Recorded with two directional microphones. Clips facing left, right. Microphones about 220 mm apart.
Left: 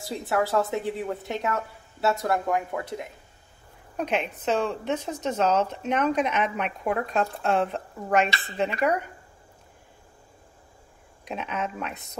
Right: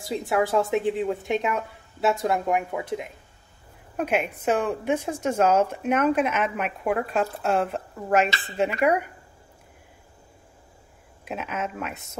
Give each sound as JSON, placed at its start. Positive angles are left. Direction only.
{"t": 0.3, "sound": "a woman's voice", "side_deg": -15}
{"t": 11.2, "sound": "speech", "side_deg": -5}